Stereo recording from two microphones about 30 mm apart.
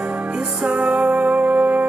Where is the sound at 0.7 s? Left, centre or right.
Right.